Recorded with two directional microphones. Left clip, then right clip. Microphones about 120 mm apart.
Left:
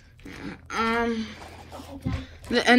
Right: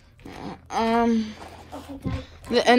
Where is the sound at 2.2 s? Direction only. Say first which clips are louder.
Right 3 dB; 45° right (ahead or behind).